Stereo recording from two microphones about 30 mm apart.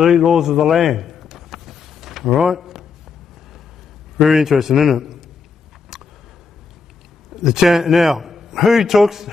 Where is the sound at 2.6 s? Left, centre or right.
Centre.